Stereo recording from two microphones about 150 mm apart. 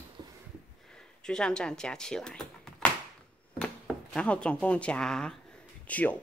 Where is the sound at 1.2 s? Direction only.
5° left (ahead or behind).